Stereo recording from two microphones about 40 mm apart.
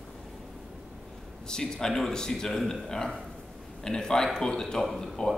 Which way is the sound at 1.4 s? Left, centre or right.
Centre.